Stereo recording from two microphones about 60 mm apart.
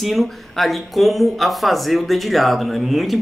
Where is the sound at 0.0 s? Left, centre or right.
Centre.